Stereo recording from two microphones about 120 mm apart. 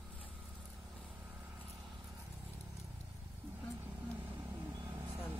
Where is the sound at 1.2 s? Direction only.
15° right (ahead or behind).